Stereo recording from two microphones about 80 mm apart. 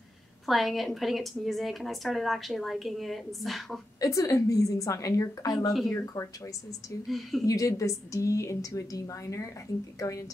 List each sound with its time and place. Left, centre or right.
0.5 s a woman's voice: centre
4.0 s a woman's voice: left
5.7 s a woman's voice: centre
7.1 s a woman's voice: centre
7.4 s a woman's voice: left